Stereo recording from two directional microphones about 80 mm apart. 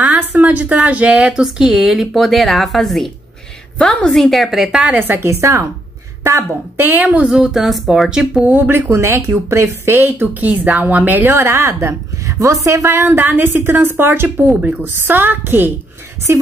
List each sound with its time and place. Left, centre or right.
0.4 s a woman's voice: centre
4.9 s a woman's voice: right
7.1 s speech: centre
8.5 s a woman's voice: right
9.9 s a woman's voice: right